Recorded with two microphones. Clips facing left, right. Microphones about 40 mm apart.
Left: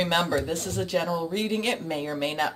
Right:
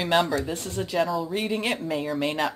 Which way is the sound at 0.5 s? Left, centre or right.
Centre.